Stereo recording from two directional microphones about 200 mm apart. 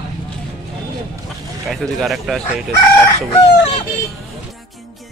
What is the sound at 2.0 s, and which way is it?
Speech, centre (ahead or behind).